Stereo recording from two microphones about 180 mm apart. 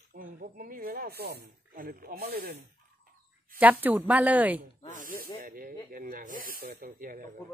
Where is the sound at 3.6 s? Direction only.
10° right (ahead or behind).